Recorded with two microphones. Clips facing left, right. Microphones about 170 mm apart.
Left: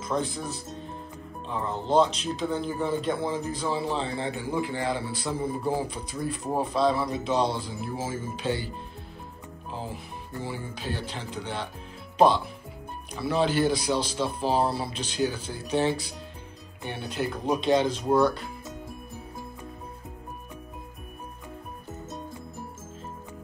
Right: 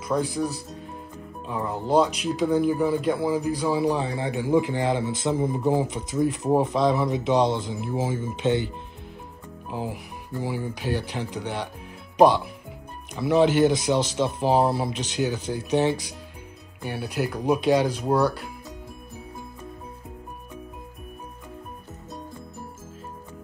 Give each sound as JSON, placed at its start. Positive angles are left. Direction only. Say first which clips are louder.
{"t": 0.1, "sound": "speech", "louder": "right 3 dB", "side_deg": -5}
{"t": 1.5, "sound": "a man's voice", "louder": "right 2 dB", "side_deg": -10}
{"t": 9.7, "sound": "speech", "louder": "right 5 dB", "side_deg": -15}
{"t": 13.1, "sound": "speech", "louder": "right 6 dB", "side_deg": -15}
{"t": 16.8, "sound": "speech", "louder": "right 3 dB", "side_deg": -5}